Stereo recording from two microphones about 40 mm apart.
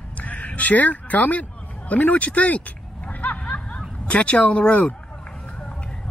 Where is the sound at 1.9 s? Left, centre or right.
Left.